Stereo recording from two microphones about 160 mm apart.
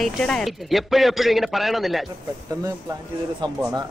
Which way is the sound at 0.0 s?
5° left (ahead or behind).